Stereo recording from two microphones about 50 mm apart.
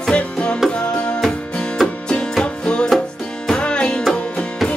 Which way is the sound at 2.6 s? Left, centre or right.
Centre.